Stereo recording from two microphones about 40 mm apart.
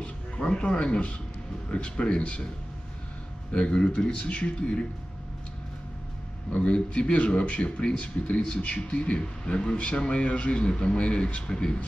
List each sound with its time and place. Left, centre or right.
0.0 s speech: left
3.5 s speech: left
6.5 s speech: left